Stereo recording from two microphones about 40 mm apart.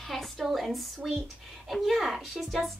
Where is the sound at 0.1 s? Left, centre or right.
Centre.